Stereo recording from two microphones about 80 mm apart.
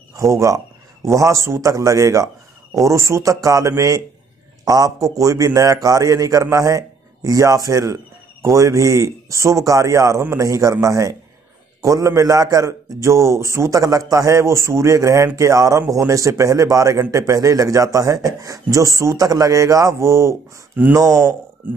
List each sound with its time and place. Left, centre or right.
0.1 s a man's voice: right